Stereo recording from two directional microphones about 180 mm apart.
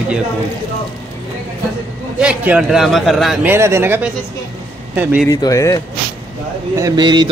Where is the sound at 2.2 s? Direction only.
5° right (ahead or behind).